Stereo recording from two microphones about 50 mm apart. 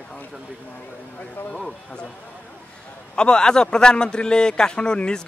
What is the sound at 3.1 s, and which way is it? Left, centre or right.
A man's voice, centre.